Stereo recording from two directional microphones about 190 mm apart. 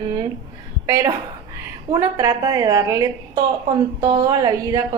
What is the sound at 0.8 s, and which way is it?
A woman's voice, 15° right (ahead or behind).